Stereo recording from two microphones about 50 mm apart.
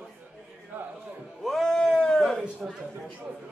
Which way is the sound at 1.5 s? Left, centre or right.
Centre.